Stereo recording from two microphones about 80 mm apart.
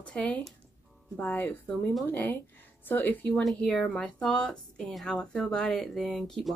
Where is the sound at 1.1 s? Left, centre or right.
Left.